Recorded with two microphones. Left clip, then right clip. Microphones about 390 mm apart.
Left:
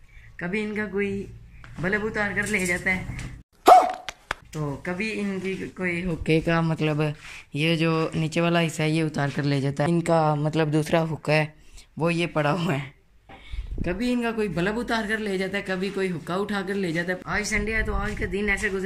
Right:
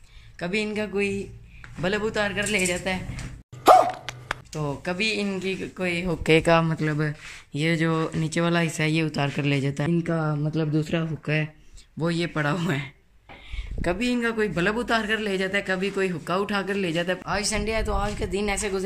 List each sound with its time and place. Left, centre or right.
0.4 s speech: centre
3.6 s dog: centre
5.0 s speech: centre
5.9 s speech: right
6.2 s speech: centre
6.6 s speech: centre
9.9 s speech: centre
13.9 s speech: centre